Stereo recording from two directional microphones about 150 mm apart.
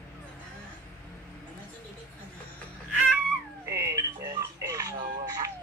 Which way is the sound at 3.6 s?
20° right (ahead or behind).